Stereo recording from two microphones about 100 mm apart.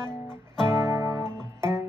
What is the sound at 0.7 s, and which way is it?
Music, 25° right (ahead or behind).